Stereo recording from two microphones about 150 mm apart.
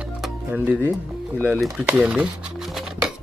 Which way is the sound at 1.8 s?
10° right (ahead or behind).